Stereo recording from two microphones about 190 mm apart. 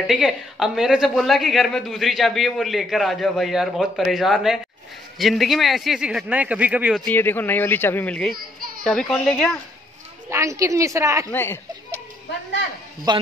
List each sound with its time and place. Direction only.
0.0 s speech: centre (ahead or behind)
7.1 s speech: 10° left (ahead or behind)
10.3 s a woman's voice: 15° right (ahead or behind)
11.3 s speech: 10° left (ahead or behind)
13.1 s a man's voice: 20° right (ahead or behind)